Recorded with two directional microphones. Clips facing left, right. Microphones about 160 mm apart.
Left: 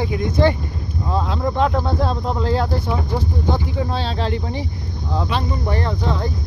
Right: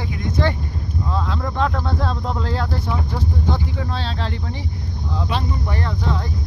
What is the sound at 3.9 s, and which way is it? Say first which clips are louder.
Speech: left 4 dB; 15° left (ahead or behind).